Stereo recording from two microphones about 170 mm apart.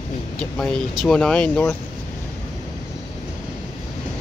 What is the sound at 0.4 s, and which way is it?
Speech, 5° left (ahead or behind).